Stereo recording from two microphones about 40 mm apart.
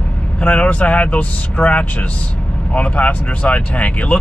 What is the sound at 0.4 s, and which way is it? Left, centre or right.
Speech, left.